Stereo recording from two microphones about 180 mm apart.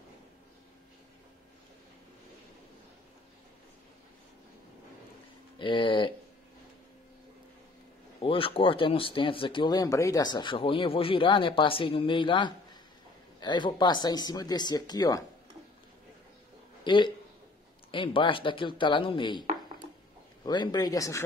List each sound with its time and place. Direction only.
5.6 s speech: 25° left (ahead or behind)
8.2 s speech: 30° left (ahead or behind)
16.8 s speech: 25° left (ahead or behind)
20.4 s speech: 25° left (ahead or behind)